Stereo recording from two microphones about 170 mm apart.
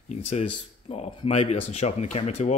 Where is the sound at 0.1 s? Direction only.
40° left (ahead or behind).